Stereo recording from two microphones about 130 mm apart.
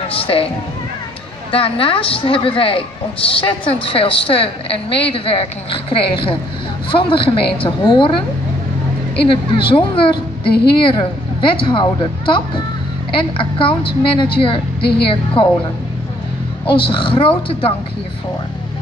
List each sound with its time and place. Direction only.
0.1 s a woman's voice: 45° left (ahead or behind)
1.5 s a woman's voice: 45° left (ahead or behind)
9.3 s a woman's voice: 40° left (ahead or behind)
16.6 s a woman's voice: 40° left (ahead or behind)